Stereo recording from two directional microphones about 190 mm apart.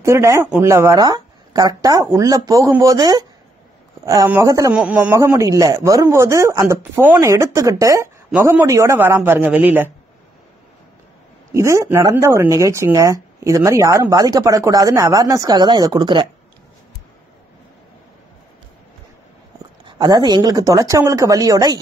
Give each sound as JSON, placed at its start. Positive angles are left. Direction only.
{"t": 0.0, "sound": "speech", "side_deg": -15}
{"t": 4.7, "sound": "speech", "side_deg": -5}
{"t": 11.5, "sound": "speech", "side_deg": -15}
{"t": 19.8, "sound": "speech", "side_deg": -25}